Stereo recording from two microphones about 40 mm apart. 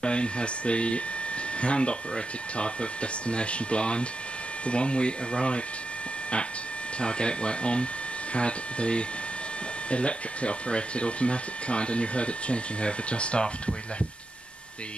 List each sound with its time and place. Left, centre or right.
0.0 s speech: left
7.0 s speech: left